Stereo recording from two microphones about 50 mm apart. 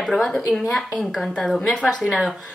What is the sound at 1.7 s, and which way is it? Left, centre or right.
Speech, centre.